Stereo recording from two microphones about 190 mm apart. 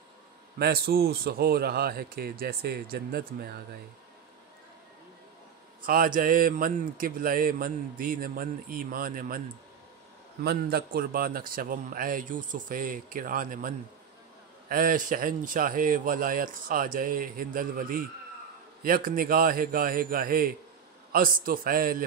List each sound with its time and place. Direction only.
0.6 s speech: 55° right (ahead or behind)
5.8 s a man's voice: 50° right (ahead or behind)
10.4 s a man's voice: 55° right (ahead or behind)